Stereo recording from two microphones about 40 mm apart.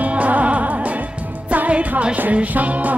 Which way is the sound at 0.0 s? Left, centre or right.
Right.